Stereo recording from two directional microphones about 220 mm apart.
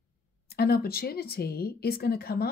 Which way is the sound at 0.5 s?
45° left (ahead or behind).